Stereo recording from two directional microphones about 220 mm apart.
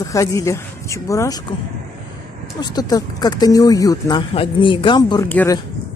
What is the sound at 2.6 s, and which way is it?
Speech, 20° left (ahead or behind).